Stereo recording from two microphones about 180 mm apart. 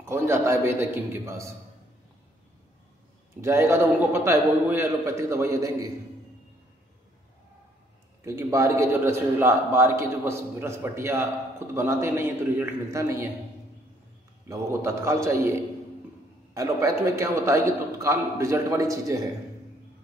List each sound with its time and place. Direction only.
0.0 s a man's voice: 15° right (ahead or behind)
3.3 s a man's voice: 15° right (ahead or behind)
8.2 s a man's voice: 15° right (ahead or behind)
14.5 s a man's voice: 15° right (ahead or behind)
16.5 s a man's voice: 15° right (ahead or behind)